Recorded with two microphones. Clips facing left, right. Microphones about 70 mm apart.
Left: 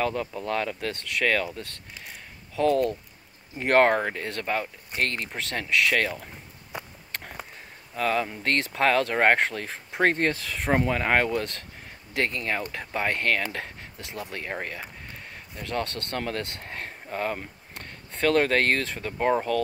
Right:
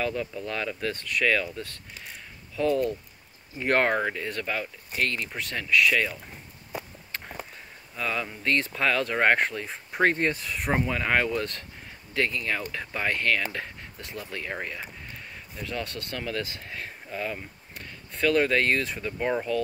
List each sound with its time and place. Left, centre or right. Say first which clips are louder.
0.0 s speech: left 2 dB; left
3.5 s speech: left 4 dB; left
7.9 s speech: left 5 dB; left
15.6 s speech: left 3 dB; left